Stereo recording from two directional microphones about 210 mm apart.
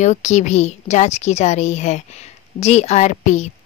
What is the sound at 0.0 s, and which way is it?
A woman's voice, 35° left (ahead or behind).